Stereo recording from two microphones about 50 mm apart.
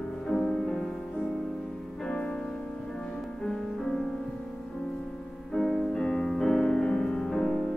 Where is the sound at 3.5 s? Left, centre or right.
Centre.